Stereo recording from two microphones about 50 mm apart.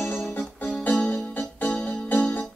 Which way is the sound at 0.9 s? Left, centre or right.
Left.